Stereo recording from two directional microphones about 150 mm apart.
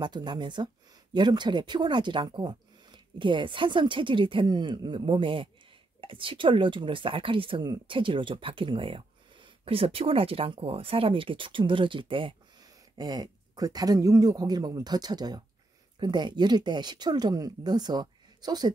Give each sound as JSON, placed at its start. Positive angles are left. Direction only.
{"t": 0.0, "sound": "speech", "side_deg": -30}